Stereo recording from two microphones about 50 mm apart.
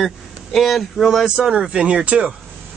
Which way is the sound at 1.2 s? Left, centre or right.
Centre.